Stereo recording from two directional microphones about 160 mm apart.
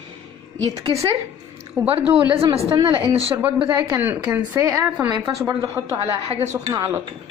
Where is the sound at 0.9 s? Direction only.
35° right (ahead or behind).